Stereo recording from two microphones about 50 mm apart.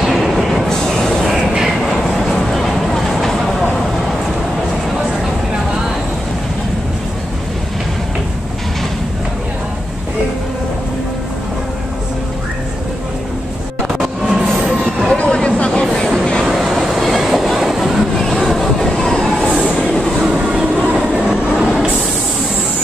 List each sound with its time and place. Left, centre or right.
0.0 s train: centre
1.3 s vehicle: centre
2.0 s vehicle: centre
13.9 s train: centre
15.0 s a sound: centre
16.4 s vehicle: centre
17.2 s train: centre
18.2 s vehicle: centre
19.1 s train: centre
20.2 s train: centre